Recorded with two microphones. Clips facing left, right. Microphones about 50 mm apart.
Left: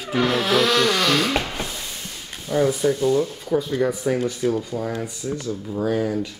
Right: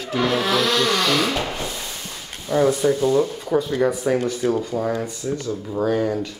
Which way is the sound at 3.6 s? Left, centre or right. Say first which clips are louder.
Right 2 dB; centre.